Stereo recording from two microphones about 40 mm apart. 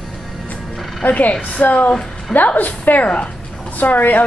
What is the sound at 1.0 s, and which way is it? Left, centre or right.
Speech, left.